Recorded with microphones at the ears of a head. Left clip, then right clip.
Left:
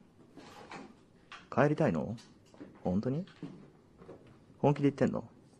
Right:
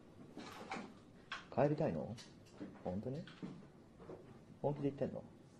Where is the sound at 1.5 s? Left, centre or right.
Left.